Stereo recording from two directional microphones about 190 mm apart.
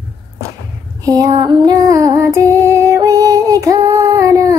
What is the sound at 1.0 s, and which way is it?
Female singing, 20° right (ahead or behind).